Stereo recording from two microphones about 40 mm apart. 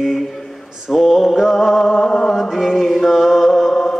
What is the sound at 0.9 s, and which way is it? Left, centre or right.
Music, centre.